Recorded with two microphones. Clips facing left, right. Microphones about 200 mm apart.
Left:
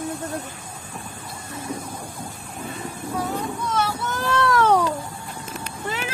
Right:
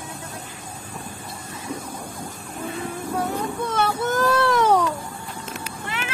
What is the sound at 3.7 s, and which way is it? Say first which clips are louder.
Vehicle: right 2 dB; 55° right (ahead or behind).